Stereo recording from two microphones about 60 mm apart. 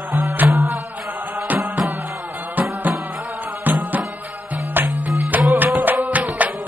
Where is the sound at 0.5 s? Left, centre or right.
Right.